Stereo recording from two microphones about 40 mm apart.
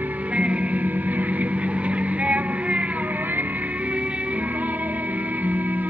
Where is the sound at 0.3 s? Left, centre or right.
Right.